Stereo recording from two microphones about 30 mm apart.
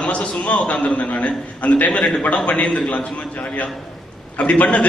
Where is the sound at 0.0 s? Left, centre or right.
Left.